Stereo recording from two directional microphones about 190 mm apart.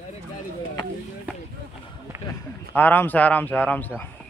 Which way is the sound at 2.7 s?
10° left (ahead or behind).